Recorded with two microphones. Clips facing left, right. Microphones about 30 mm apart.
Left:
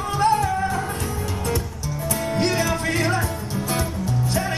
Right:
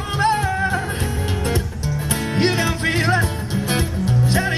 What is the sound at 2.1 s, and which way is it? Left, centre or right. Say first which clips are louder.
Music: right 2 dB; right.